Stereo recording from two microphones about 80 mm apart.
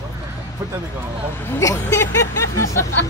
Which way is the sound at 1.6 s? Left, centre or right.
Left.